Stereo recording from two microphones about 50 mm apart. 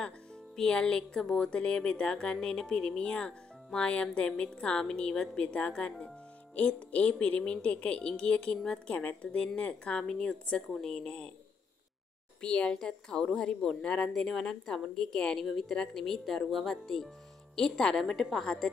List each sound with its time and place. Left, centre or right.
0.6 s speech: centre
12.4 s speech: centre